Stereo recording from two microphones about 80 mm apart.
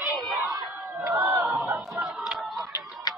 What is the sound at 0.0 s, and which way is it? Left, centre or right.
Crowd, centre.